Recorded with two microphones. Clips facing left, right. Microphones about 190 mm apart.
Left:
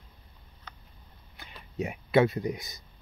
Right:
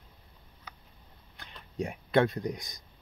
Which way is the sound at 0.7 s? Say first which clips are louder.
Even; 10° right (ahead or behind).